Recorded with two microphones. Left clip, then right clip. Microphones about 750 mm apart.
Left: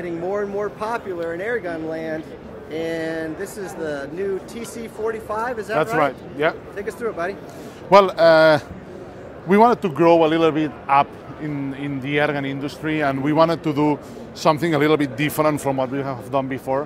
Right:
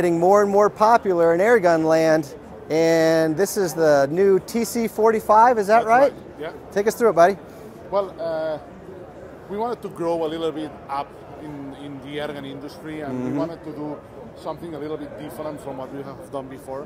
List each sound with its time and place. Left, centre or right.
0.0 s speech: right
7.9 s a man's voice: left
9.6 s a man's voice: left
12.1 s a man's voice: left
15.4 s a man's voice: left